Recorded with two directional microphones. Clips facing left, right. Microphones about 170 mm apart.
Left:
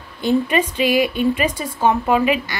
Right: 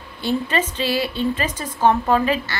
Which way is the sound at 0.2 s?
15° left (ahead or behind).